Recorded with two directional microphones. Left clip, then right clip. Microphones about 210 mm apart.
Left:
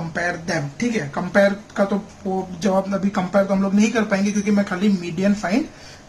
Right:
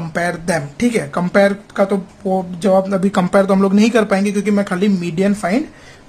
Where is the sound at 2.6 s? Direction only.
35° right (ahead or behind).